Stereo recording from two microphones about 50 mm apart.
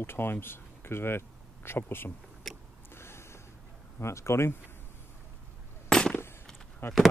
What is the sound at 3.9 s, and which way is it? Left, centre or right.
Speech, left.